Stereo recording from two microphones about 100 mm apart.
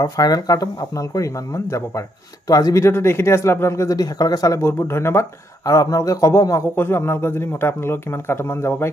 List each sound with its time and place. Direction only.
0.0 s speech: 40° left (ahead or behind)
4.6 s a man's voice: 25° left (ahead or behind)
6.7 s a man's voice: 20° left (ahead or behind)